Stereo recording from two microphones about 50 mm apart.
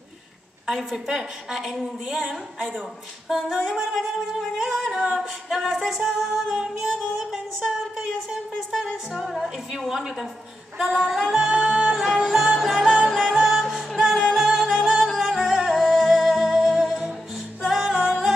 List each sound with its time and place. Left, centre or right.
0.7 s singing: centre
1.1 s a woman's voice: centre
3.3 s singing: centre
6.5 s a woman's voice: centre
8.3 s singing: centre
9.7 s a woman's voice: centre
10.9 s singing: centre
11.3 s a woman's voice: centre
12.7 s music: centre